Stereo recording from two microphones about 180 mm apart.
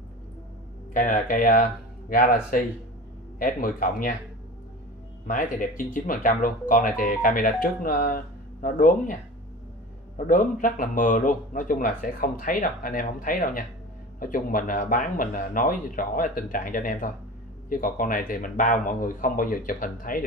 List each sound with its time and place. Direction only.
0.9 s speech: 45° left (ahead or behind)
5.2 s speech: 50° left (ahead or behind)
10.1 s speech: 45° left (ahead or behind)